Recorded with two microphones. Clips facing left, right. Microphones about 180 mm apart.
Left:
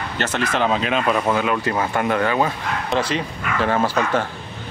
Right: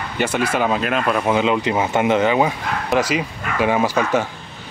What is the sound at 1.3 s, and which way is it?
Speech, 20° right (ahead or behind).